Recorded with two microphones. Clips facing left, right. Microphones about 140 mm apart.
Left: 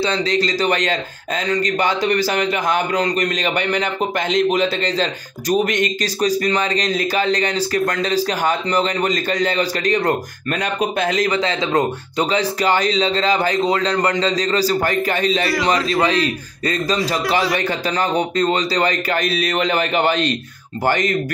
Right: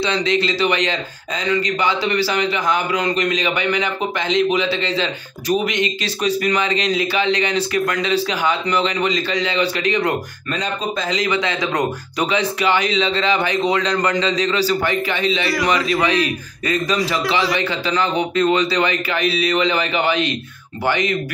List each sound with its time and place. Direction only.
0.0 s speech: 35° left (ahead or behind)
10.5 s speech: 65° left (ahead or behind)
11.3 s speech: 30° left (ahead or behind)
13.6 s a man's voice: 30° left (ahead or behind)
14.2 s speech: 35° left (ahead or behind)
15.4 s a man's voice: centre (ahead or behind)
16.6 s speech: 30° left (ahead or behind)
17.0 s a man's voice: centre (ahead or behind)
17.6 s speech: 45° left (ahead or behind)